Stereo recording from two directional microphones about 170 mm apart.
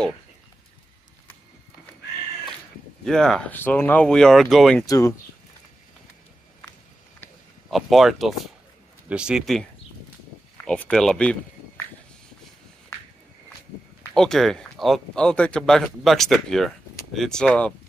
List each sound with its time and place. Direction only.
3.1 s speech: 5° left (ahead or behind)
4.8 s speech: 20° left (ahead or behind)
7.7 s speech: centre (ahead or behind)
14.1 s speech: 5° left (ahead or behind)